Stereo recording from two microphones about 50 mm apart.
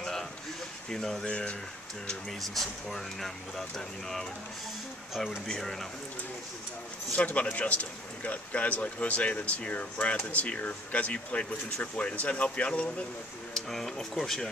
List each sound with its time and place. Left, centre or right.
0.0 s a sound: centre
0.8 s speech: centre
1.2 s speech: left
2.4 s speech: centre
5.5 s speech: centre
7.2 s speech: left
13.6 s speech: centre